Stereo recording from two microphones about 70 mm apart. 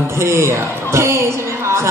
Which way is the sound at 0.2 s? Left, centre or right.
Right.